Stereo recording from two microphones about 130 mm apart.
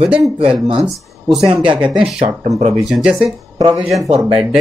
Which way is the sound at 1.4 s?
40° right (ahead or behind).